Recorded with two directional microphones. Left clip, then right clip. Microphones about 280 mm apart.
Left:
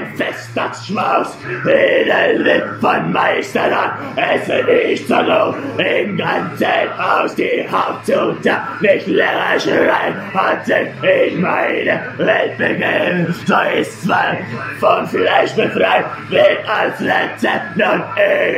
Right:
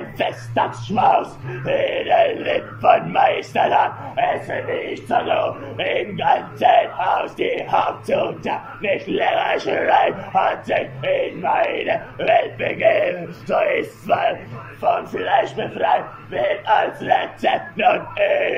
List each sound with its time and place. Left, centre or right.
0.2 s speech: centre